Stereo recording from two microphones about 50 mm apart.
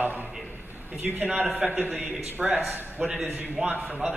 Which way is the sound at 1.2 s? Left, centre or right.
Right.